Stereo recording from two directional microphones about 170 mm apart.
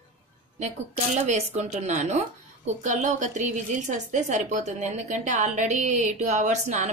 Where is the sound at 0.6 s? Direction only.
45° right (ahead or behind).